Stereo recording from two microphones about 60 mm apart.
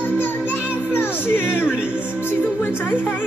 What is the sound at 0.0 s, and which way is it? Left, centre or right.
Music, left.